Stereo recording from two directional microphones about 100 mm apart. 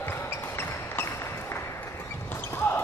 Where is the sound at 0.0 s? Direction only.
25° left (ahead or behind).